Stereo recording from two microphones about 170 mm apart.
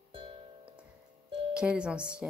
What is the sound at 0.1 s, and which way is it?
Music, 30° right (ahead or behind).